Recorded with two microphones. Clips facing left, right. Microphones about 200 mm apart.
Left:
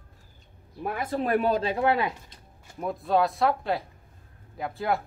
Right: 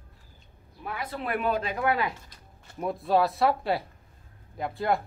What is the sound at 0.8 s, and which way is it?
Speech, 45° left (ahead or behind).